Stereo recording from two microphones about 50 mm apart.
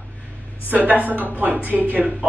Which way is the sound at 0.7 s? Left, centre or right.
Right.